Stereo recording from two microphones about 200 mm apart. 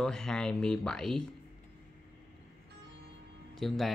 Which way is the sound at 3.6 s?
Centre (ahead or behind).